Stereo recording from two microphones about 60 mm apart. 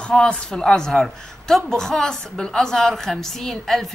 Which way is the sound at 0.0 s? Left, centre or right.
Centre.